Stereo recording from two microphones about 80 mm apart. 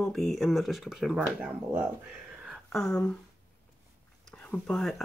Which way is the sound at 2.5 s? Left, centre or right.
Centre.